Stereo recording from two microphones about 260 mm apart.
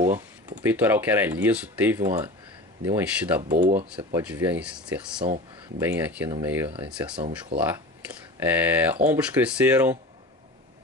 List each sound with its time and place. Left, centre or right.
0.0 s speech: centre
3.5 s speech: right
3.8 s speech: centre
5.2 s speech: right
5.8 s speech: centre
7.2 s speech: right
8.4 s speech: centre